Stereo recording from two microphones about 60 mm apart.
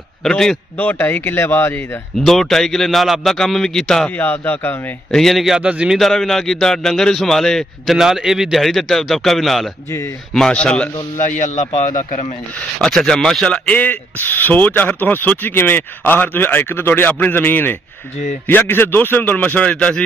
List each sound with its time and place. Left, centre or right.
0.3 s speech: centre
0.7 s speech: left
2.1 s a man's voice: centre
4.1 s speech: left
5.1 s a man's voice: centre
5.6 s a man's voice: centre
5.9 s a man's voice: centre
9.8 s speech: left
10.5 s speech: centre
12.5 s speech: centre
13.7 s speech: left